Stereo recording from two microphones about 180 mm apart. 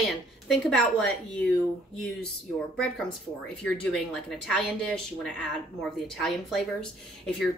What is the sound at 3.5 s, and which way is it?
Speech, 5° left (ahead or behind).